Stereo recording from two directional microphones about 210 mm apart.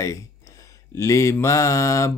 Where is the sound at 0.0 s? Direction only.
15° left (ahead or behind).